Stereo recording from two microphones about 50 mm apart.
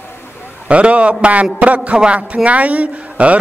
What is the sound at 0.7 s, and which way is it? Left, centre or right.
A man's voice, right.